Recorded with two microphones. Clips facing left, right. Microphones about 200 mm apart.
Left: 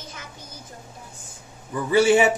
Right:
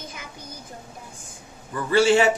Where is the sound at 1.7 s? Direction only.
15° left (ahead or behind).